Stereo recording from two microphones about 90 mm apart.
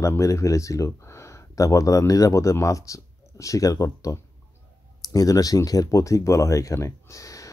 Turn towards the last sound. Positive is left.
turn(degrees=35)  # may be behind; listen again after turning